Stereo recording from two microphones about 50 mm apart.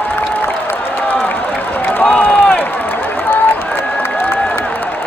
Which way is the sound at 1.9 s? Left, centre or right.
Left.